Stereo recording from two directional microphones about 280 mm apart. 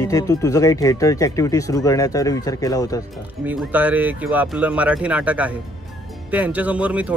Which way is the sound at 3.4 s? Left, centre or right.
Centre.